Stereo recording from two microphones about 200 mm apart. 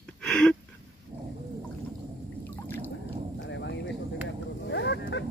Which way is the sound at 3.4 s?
65° left (ahead or behind).